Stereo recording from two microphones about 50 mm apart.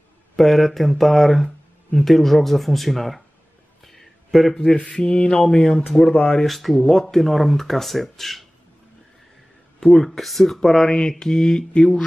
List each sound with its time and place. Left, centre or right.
0.4 s speech: centre
3.8 s a sound: centre
4.9 s speech: centre
6.4 s speech: centre
9.8 s speech: centre